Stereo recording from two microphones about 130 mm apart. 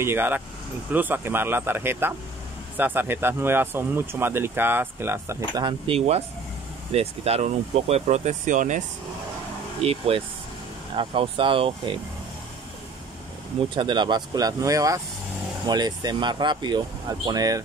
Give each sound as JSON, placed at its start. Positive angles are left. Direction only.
{"t": 0.0, "sound": "speech", "side_deg": -15}
{"t": 5.9, "sound": "speech", "side_deg": -50}
{"t": 9.8, "sound": "speech", "side_deg": -50}
{"t": 13.7, "sound": "speech", "side_deg": -35}